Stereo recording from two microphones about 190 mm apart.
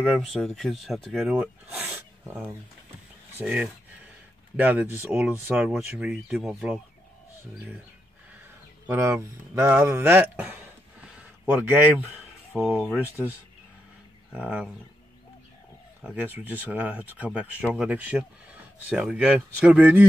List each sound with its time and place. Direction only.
0.0 s speech: centre (ahead or behind)
8.8 s speech: 10° right (ahead or behind)
12.5 s speech: centre (ahead or behind)
14.3 s speech: 5° right (ahead or behind)
16.0 s speech: 5° right (ahead or behind)